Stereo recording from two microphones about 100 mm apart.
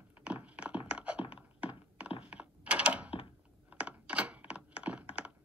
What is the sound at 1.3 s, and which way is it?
Thunk, 15° right (ahead or behind).